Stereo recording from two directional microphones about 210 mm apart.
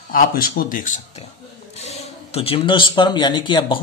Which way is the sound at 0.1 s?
45° left (ahead or behind).